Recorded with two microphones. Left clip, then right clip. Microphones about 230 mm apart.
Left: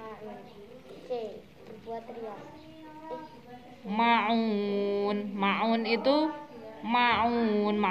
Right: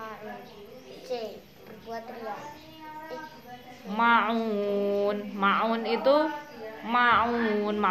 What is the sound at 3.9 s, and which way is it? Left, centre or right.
A woman's voice, left.